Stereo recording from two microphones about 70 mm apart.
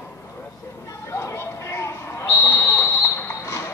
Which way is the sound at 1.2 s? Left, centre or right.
Left.